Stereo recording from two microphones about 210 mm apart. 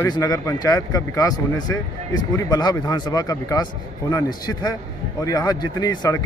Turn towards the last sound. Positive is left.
turn(degrees=15)  # may be behind; listen again after turning